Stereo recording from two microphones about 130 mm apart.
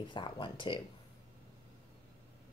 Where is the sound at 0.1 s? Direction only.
40° left (ahead or behind).